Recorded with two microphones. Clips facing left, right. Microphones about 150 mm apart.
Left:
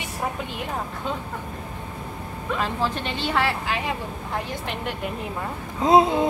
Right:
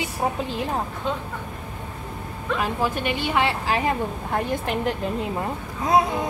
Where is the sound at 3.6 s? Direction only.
45° right (ahead or behind).